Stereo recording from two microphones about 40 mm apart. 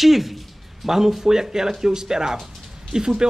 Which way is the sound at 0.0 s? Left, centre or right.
Centre.